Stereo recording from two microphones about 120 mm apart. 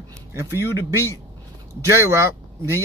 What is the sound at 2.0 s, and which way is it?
Speech, 20° right (ahead or behind).